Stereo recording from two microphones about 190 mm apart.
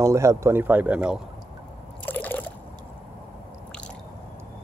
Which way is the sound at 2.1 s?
10° left (ahead or behind).